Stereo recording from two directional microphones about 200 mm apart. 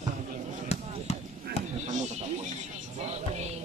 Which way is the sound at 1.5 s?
50° right (ahead or behind).